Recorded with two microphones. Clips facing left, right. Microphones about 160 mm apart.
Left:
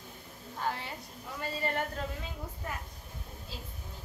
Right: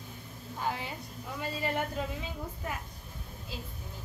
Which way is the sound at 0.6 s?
5° right (ahead or behind).